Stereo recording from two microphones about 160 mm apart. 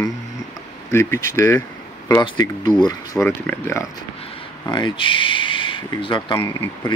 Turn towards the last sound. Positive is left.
turn(degrees=30)  # may be behind; listen again after turning